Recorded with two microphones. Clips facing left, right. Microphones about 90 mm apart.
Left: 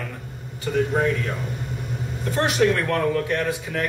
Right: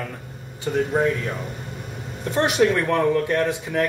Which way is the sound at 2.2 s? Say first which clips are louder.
Right 1 dB; 20° right (ahead or behind).